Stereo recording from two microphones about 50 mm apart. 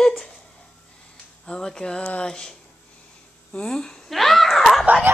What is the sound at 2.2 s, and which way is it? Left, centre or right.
Speech, centre.